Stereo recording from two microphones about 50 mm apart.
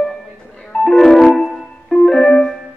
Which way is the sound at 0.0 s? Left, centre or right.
Centre.